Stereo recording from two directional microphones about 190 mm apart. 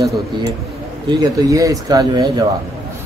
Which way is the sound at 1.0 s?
20° right (ahead or behind).